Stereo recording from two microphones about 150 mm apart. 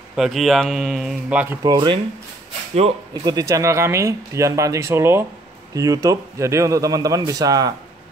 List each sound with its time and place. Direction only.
0.1 s speech: centre (ahead or behind)
1.6 s speech: 30° right (ahead or behind)
3.3 s speech: 25° right (ahead or behind)